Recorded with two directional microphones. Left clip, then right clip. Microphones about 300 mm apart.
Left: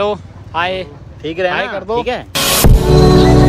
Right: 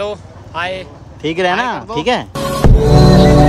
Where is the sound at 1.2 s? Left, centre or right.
Right.